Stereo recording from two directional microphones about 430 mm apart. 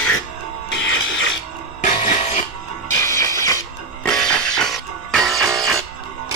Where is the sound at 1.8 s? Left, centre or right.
Centre.